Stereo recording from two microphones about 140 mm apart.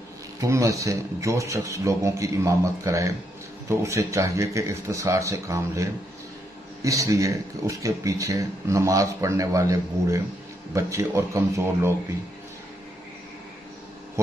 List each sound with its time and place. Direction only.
0.4 s speech: 25° right (ahead or behind)